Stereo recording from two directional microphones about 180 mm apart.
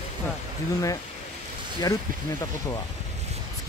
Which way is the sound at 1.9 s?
20° left (ahead or behind).